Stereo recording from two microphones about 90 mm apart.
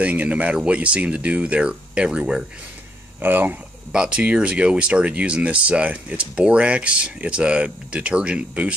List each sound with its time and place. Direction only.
0.0 s speech: 15° right (ahead or behind)
3.2 s speech: 20° right (ahead or behind)
3.9 s speech: 10° right (ahead or behind)